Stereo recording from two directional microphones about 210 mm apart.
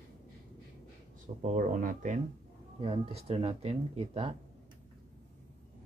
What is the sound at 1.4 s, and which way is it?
Speech, 35° right (ahead or behind).